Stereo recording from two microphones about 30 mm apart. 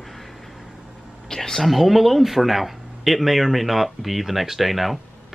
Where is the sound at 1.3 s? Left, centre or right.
Centre.